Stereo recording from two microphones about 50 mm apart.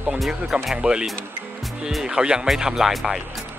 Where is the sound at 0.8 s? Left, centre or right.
Centre.